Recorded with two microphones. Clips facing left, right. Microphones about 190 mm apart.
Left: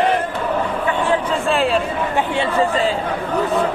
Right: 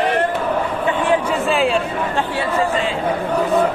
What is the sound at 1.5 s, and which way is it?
Speech, centre (ahead or behind).